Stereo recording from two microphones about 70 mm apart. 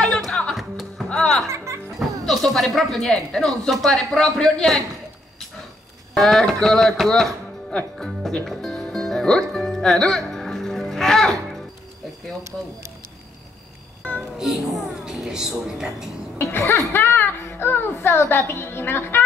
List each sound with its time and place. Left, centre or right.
0.0 s music: centre
0.6 s music: centre
1.0 s music: centre
1.5 s music: right
2.0 s speech: centre
6.1 s speech: centre
8.5 s music: centre
14.4 s a woman's voice: centre
16.5 s a woman's voice: left
16.9 s music: left
17.9 s a woman's voice: left